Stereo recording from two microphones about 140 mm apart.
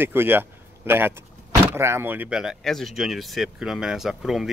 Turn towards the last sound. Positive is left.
turn(degrees=-5)  # may be behind; listen again after turning